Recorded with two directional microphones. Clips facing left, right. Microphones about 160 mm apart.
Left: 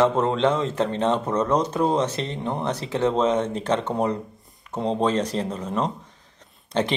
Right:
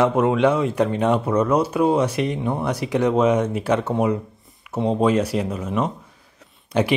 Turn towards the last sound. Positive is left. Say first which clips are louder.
# right 3 dB
turn(degrees=-10)  # may be behind; listen again after turning